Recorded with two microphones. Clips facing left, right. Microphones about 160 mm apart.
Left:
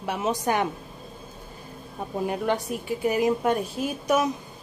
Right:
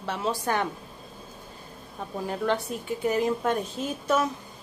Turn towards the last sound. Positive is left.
turn(degrees=10)  # may be behind; listen again after turning